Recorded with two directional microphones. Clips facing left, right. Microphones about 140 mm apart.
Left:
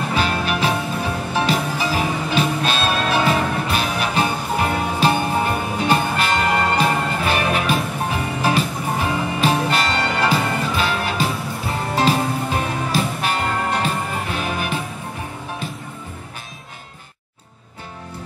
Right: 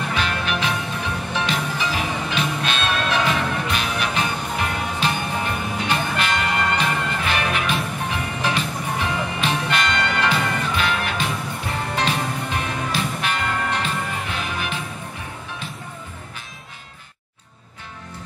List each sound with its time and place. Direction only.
0.1 s music: 40° left (ahead or behind)